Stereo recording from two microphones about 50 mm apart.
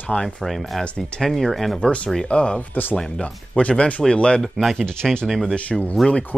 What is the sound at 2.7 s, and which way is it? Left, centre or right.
Speech, left.